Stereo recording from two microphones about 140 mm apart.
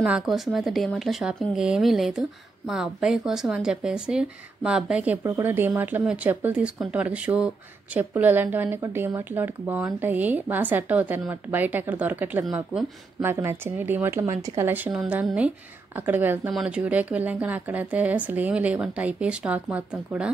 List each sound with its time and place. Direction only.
0.0 s speech: 5° right (ahead or behind)